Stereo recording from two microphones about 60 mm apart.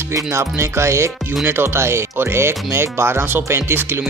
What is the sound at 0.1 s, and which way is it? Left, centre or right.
Speech, right.